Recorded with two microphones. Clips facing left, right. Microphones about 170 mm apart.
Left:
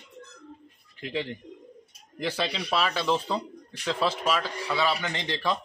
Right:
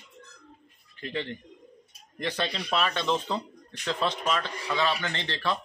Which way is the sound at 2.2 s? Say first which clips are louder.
Left 1 dB; 5° left (ahead or behind).